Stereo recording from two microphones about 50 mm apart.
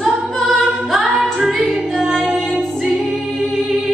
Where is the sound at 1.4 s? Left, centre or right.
Centre.